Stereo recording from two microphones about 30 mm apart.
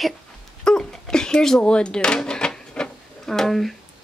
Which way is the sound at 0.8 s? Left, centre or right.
Centre.